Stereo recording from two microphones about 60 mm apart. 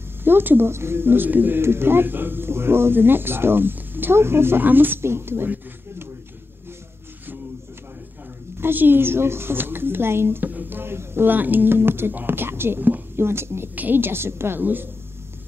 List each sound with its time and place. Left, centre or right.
0.2 s speech: right
8.5 s speech: right